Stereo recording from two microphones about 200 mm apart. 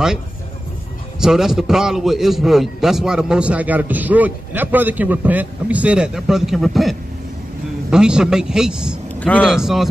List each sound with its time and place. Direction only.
1.2 s a man's voice: centre (ahead or behind)